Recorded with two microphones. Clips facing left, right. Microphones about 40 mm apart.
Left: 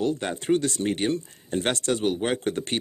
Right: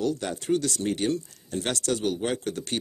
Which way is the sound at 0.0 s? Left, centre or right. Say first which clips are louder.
Left 2 dB; left.